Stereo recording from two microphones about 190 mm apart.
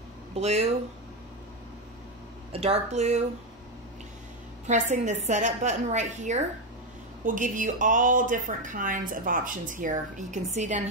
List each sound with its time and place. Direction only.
0.3 s speech: 35° right (ahead or behind)
2.5 s a woman's voice: 30° right (ahead or behind)
4.6 s a woman's voice: 40° right (ahead or behind)